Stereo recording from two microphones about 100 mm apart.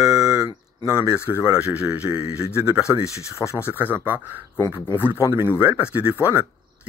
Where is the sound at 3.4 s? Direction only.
30° left (ahead or behind).